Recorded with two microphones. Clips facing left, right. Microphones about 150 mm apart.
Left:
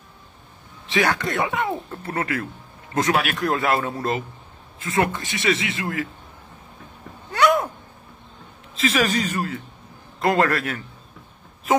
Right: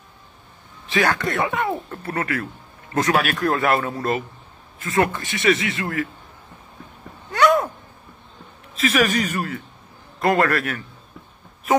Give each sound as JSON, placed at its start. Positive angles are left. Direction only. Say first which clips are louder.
{"t": 0.9, "sound": "speech", "louder": "right 1 dB", "side_deg": 15}
{"t": 8.7, "sound": "speech", "louder": "right 2 dB", "side_deg": 30}